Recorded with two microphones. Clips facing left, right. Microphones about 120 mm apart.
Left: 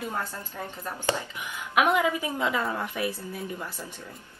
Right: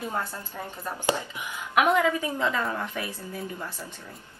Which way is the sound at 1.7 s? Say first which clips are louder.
Right 1 dB; 10° left (ahead or behind).